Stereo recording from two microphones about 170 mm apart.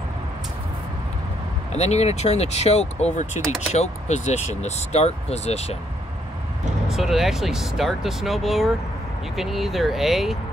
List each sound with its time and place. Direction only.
1.7 s speech: 40° left (ahead or behind)
6.9 s speech: centre (ahead or behind)